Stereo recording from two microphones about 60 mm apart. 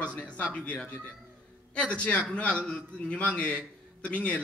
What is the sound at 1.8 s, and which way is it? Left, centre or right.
A man's voice, left.